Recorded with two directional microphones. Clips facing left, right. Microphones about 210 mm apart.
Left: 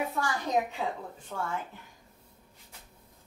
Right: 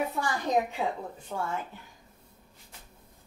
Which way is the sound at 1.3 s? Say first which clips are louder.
Right 2 dB; 25° right (ahead or behind).